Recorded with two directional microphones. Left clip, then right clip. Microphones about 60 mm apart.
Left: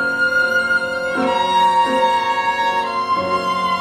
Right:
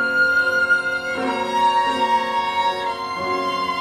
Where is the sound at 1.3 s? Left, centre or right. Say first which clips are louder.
Left 4 dB; left.